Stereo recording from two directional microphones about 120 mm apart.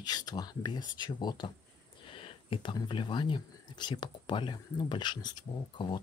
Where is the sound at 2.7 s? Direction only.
40° left (ahead or behind).